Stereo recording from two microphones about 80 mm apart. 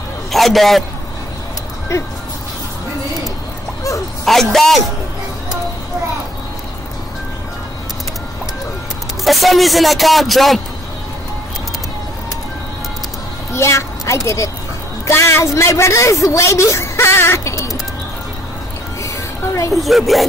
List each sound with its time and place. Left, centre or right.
0.3 s a man's voice: centre
4.3 s speech: centre
9.2 s speech: centre
13.5 s a child's voice: left
19.0 s music: left
19.7 s speech: centre